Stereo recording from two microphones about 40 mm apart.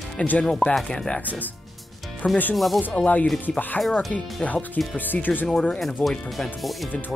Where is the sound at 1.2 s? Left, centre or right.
Left.